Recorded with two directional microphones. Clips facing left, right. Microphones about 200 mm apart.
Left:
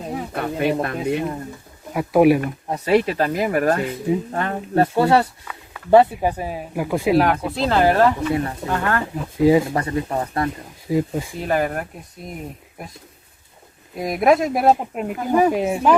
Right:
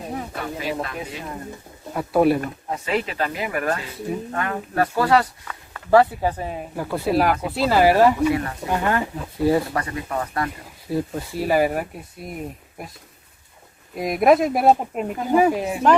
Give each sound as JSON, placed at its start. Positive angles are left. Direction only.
{"t": 0.3, "sound": "speech", "side_deg": 60}
{"t": 2.0, "sound": "speech", "side_deg": 10}
{"t": 2.7, "sound": "speech", "side_deg": 40}
{"t": 6.3, "sound": "speech", "side_deg": 10}
{"t": 7.4, "sound": "speech", "side_deg": -5}
{"t": 8.3, "sound": "speech", "side_deg": 25}
{"t": 8.6, "sound": "speech", "side_deg": -15}
{"t": 9.4, "sound": "speech", "side_deg": 15}
{"t": 9.7, "sound": "speech", "side_deg": 25}
{"t": 10.9, "sound": "speech", "side_deg": 10}
{"t": 11.3, "sound": "speech", "side_deg": -5}
{"t": 13.9, "sound": "speech", "side_deg": 0}
{"t": 15.5, "sound": "speech", "side_deg": 20}